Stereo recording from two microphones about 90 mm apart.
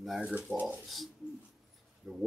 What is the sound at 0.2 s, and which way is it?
Speech, 15° right (ahead or behind).